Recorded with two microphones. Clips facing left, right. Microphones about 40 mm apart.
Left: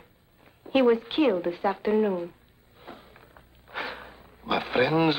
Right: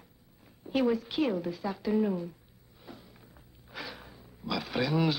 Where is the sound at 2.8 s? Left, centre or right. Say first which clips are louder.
Left 4 dB; left.